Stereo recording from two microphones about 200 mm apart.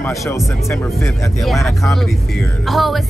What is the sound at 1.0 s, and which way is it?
Speech, centre (ahead or behind).